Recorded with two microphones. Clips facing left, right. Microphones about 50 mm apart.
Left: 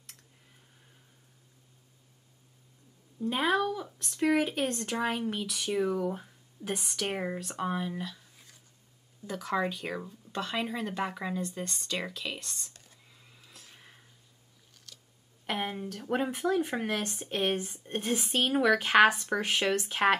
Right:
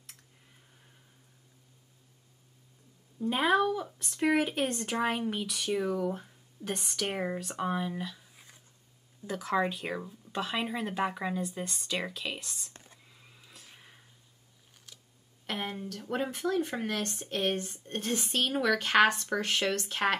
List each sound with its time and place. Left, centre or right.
3.2 s speech: centre
9.3 s speech: centre
12.7 s whispering: right
13.2 s a sound: centre
14.9 s a sound: centre
15.4 s speech: centre